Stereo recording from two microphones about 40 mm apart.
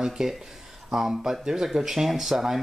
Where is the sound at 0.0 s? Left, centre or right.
Centre.